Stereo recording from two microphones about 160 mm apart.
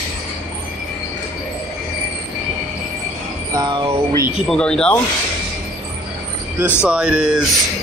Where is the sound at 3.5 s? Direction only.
30° right (ahead or behind).